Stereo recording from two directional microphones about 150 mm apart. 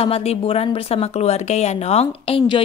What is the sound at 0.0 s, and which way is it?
A woman's voice, 40° left (ahead or behind).